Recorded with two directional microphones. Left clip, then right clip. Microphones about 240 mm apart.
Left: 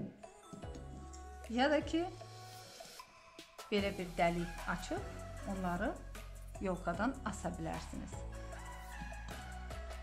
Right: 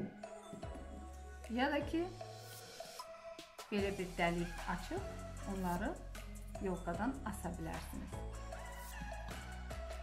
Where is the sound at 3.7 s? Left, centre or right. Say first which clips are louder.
Left 2 dB; left.